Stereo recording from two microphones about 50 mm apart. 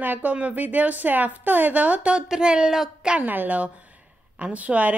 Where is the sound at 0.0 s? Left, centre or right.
Right.